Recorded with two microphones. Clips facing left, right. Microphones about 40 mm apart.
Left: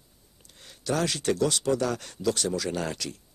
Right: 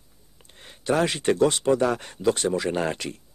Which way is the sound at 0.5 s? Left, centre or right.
Right.